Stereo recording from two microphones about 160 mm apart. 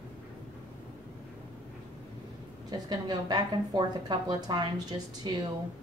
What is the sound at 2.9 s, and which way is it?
A woman's voice, 25° right (ahead or behind).